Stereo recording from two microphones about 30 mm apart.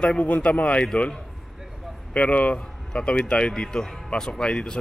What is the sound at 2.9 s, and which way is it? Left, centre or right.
Speech, left.